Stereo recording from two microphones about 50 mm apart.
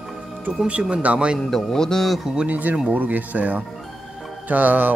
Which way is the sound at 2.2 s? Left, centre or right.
Centre.